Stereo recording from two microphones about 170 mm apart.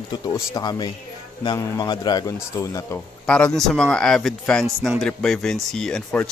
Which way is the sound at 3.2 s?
5° left (ahead or behind).